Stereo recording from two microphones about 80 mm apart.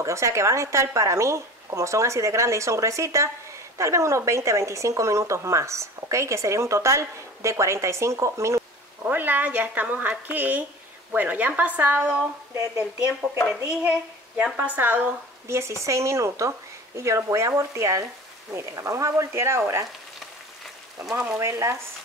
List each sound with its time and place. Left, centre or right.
0.0 s speech: right
9.0 s speech: right
12.5 s speech: right
13.8 s a woman's voice: centre
15.4 s speech: right
21.0 s speech: right